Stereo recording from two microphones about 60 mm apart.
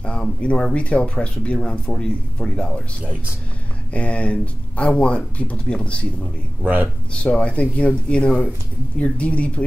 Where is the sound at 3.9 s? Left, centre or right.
Left.